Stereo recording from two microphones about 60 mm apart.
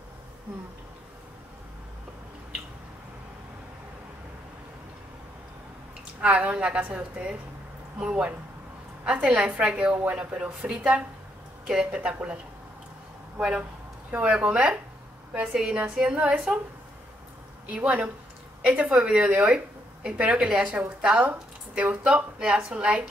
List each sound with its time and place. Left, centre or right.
6.2 s a woman's voice: right
11.6 s a woman's voice: centre
13.4 s a woman's voice: centre
17.6 s a woman's voice: centre